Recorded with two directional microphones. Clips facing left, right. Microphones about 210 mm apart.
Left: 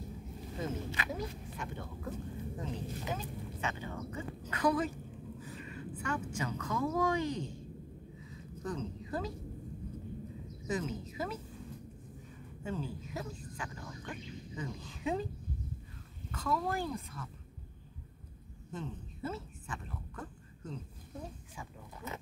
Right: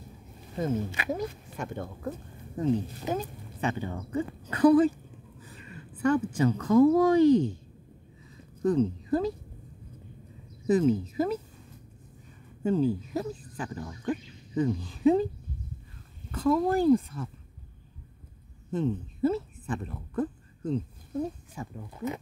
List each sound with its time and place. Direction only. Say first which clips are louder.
0.6 s speech: right 8 dB; 40° right (ahead or behind)
6.0 s speech: right 14 dB; 35° right (ahead or behind)
8.6 s speech: right 14 dB; 35° right (ahead or behind)
10.7 s speech: right 13 dB; 35° right (ahead or behind)
12.6 s speech: right 14 dB; 35° right (ahead or behind)
16.3 s a woman's voice: right 10 dB; 35° right (ahead or behind)
18.7 s speech: right 14 dB; 35° right (ahead or behind)